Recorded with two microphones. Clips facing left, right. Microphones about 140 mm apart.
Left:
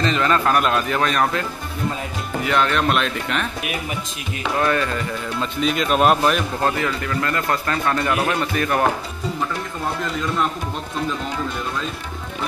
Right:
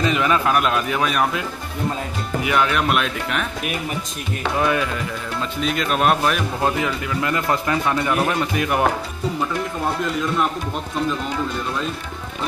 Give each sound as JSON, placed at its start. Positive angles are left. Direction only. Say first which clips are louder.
{"t": 0.0, "sound": "speech", "louder": "even", "side_deg": -10}
{"t": 2.4, "sound": "speech", "louder": "left 1 dB", "side_deg": -10}
{"t": 4.6, "sound": "speech", "louder": "left 1 dB", "side_deg": -10}
{"t": 6.6, "sound": "speech", "louder": "even", "side_deg": -15}